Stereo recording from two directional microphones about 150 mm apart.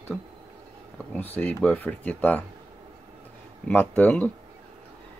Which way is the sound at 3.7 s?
10° left (ahead or behind).